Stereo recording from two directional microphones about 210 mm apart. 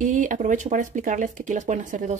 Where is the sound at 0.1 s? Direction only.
35° right (ahead or behind).